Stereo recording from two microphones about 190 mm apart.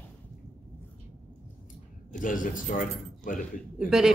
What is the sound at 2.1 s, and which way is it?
Speech, 45° left (ahead or behind).